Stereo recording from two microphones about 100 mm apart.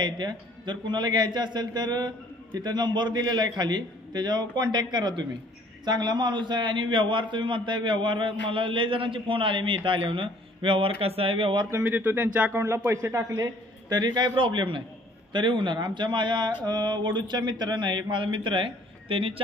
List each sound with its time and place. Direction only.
0.0 s a man's voice: 45° right (ahead or behind); by 11.6 s 65° right (ahead or behind)
11.7 s a man's voice: 20° right (ahead or behind)
13.8 s speech: 45° right (ahead or behind); by 19.4 s 65° right (ahead or behind)